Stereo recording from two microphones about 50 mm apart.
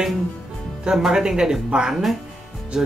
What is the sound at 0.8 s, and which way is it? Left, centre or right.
Speech, centre.